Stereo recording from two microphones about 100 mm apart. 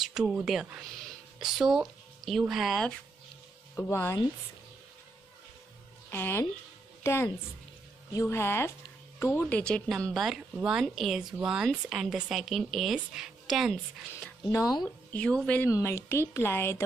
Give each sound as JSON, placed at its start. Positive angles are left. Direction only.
{"t": 0.0, "sound": "speech", "side_deg": -5}
{"t": 3.7, "sound": "a woman's voice", "side_deg": 25}
{"t": 6.0, "sound": "speech", "side_deg": 20}
{"t": 7.0, "sound": "music", "side_deg": 25}
{"t": 8.1, "sound": "a woman's voice", "side_deg": 30}
{"t": 14.5, "sound": "speech", "side_deg": 35}
{"t": 15.1, "sound": "speech", "side_deg": 10}
{"t": 15.7, "sound": "a woman's voice", "side_deg": 25}